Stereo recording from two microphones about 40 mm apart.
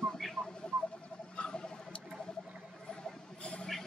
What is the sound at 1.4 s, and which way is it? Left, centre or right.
Tick-tock, left.